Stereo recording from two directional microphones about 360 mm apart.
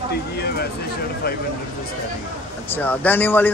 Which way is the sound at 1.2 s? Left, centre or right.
Left.